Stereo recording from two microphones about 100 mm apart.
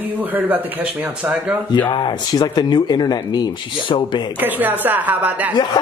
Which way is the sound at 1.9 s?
50° left (ahead or behind).